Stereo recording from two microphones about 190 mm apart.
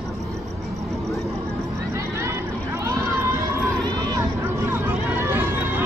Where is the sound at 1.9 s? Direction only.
15° right (ahead or behind).